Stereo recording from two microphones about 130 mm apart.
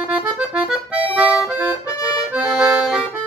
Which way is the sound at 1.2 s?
10° right (ahead or behind).